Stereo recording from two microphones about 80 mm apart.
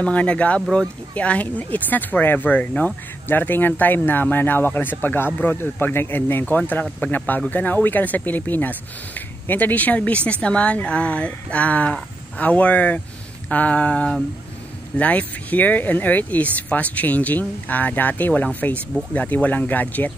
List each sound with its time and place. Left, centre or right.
0.0 s speech: centre
0.6 s speech: centre
1.1 s speech: centre